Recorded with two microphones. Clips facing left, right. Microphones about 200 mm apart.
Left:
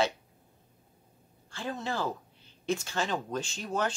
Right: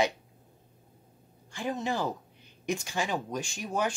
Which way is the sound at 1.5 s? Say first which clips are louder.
Right 3 dB; 15° right (ahead or behind).